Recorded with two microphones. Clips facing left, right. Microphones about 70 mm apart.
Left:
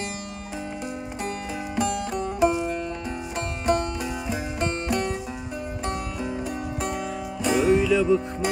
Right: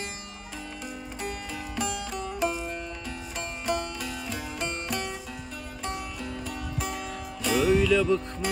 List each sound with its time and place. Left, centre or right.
1.8 s music: left
2.4 s music: centre
3.3 s music: left
7.4 s music: centre